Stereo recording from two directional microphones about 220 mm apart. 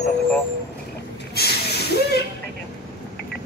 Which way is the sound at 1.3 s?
45° left (ahead or behind).